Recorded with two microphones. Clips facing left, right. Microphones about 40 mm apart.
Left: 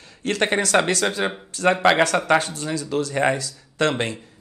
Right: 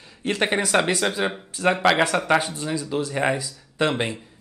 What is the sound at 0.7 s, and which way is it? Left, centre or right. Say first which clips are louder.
Speech: left 1 dB; centre.